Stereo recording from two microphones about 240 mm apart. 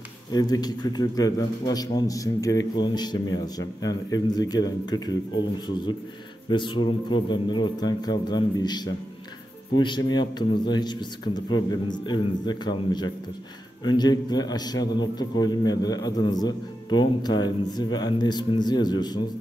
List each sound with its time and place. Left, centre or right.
0.3 s a man's voice: centre
6.5 s a man's voice: centre